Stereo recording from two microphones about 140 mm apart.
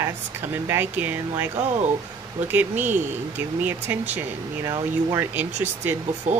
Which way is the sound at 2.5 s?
15° right (ahead or behind).